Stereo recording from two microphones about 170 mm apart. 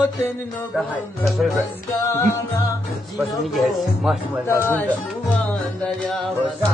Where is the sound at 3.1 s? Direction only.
Centre (ahead or behind).